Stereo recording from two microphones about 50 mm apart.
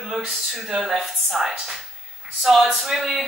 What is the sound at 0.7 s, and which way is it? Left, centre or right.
A man's voice, centre.